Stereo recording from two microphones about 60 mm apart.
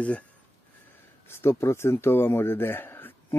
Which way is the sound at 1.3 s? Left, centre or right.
Left.